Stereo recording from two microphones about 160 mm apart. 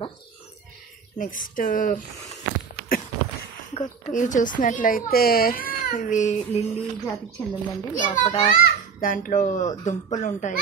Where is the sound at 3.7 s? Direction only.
45° left (ahead or behind).